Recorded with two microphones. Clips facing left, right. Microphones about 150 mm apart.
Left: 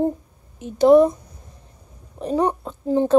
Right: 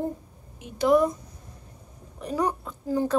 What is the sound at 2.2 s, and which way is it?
Speech, 25° left (ahead or behind).